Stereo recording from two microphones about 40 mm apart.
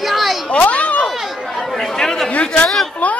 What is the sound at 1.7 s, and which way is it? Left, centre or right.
Chatter, centre.